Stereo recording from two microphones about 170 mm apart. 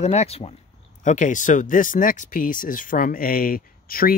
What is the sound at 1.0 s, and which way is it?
Speech, 45° left (ahead or behind).